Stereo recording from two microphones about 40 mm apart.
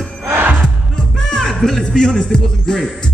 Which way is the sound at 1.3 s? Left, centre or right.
Centre.